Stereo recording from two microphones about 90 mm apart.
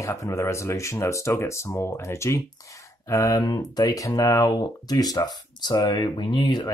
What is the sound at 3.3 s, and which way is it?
Speech, 50° left (ahead or behind).